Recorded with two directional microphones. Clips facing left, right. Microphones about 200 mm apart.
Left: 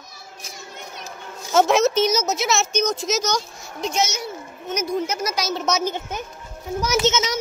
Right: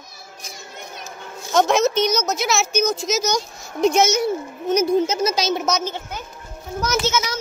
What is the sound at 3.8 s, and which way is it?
Speech, 50° right (ahead or behind).